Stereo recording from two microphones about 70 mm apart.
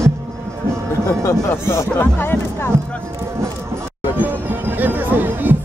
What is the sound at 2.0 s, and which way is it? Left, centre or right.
Speech, left.